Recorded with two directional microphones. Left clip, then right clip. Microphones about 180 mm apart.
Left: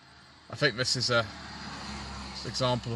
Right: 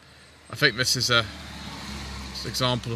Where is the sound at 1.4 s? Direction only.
45° right (ahead or behind).